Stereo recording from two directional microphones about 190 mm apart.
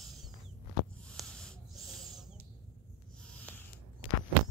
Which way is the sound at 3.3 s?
5° left (ahead or behind).